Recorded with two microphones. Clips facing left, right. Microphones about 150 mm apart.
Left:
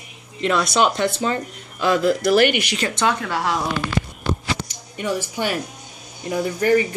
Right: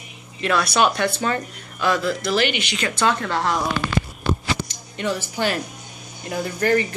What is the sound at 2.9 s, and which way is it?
Speech, 10° left (ahead or behind).